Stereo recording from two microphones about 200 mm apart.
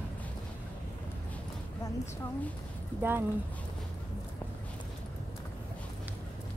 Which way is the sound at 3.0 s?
10° right (ahead or behind).